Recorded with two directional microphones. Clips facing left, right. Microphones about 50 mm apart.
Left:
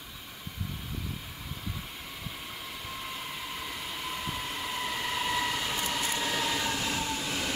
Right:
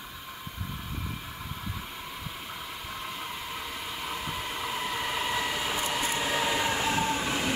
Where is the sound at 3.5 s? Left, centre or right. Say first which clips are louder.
Right 1 dB; centre.